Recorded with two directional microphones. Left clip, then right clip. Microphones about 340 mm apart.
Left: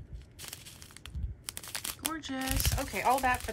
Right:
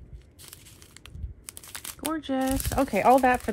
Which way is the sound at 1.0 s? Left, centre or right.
Centre.